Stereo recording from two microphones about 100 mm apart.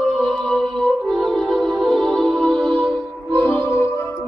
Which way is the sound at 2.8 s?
60° right (ahead or behind).